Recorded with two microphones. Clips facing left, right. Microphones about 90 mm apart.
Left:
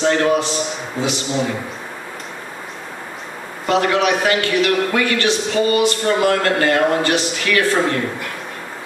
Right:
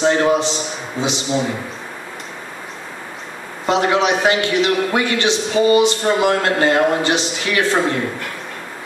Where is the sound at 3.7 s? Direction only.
20° right (ahead or behind).